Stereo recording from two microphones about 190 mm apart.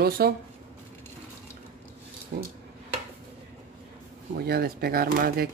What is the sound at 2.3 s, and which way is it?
Speech, 55° right (ahead or behind).